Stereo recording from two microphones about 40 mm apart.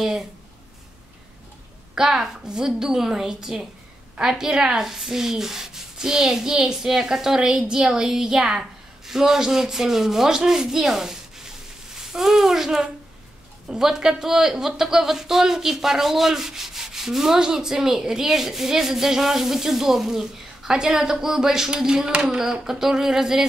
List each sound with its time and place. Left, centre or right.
0.0 s speech: centre
2.0 s speech: centre
9.0 s sanding: centre
13.7 s speech: centre